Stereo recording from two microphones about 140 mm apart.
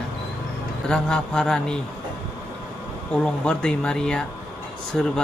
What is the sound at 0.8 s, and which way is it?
Speech, 5° left (ahead or behind).